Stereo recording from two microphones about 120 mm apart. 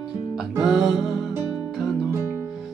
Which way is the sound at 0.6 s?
Centre (ahead or behind).